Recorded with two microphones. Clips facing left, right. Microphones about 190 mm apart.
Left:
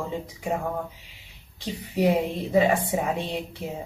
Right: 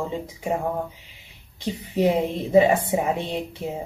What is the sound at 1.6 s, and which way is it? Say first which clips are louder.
Speech: right 2 dB; 20° right (ahead or behind).